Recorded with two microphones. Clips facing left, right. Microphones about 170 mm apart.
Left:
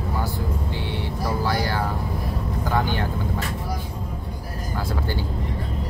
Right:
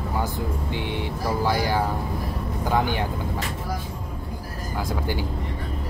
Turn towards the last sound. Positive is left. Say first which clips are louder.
# even
turn(degrees=-15)  # may be behind; listen again after turning